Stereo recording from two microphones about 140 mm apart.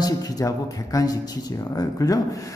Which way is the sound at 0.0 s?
25° left (ahead or behind).